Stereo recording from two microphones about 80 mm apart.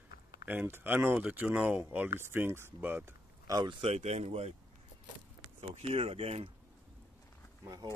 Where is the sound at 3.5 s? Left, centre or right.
Right.